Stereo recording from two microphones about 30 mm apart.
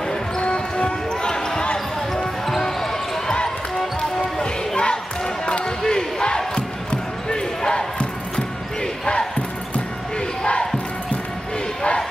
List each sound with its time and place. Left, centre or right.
0.4 s basketball bounce: left
1.2 s basketball bounce: left
2.6 s a sound: centre
4.2 s basketball bounce: left
5.8 s basketball bounce: left